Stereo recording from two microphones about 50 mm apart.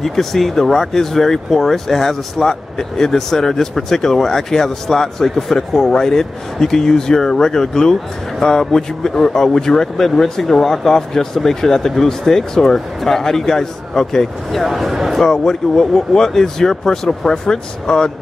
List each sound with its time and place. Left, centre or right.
0.0 s speech: centre
15.2 s speech: centre